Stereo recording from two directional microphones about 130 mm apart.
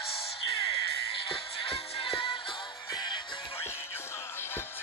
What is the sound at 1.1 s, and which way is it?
Music, 40° left (ahead or behind).